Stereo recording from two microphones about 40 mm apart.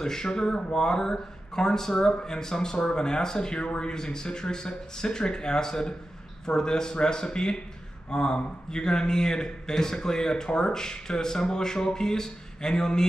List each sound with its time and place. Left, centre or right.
0.0 s a man's voice: centre